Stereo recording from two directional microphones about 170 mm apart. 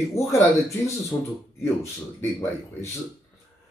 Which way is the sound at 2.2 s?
15° left (ahead or behind).